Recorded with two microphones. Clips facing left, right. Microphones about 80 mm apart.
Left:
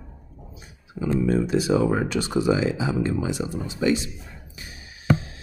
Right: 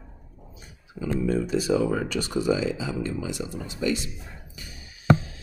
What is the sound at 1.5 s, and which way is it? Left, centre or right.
Speech, left.